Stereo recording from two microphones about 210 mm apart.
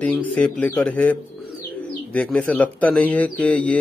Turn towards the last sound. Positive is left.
turn(degrees=5)  # may be behind; listen again after turning